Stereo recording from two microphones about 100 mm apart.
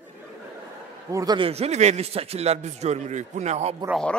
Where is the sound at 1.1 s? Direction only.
35° right (ahead or behind).